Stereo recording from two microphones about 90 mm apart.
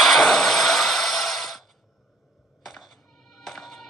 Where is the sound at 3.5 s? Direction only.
5° left (ahead or behind).